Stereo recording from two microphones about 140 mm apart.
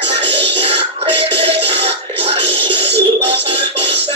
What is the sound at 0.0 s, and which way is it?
Music, 45° right (ahead or behind).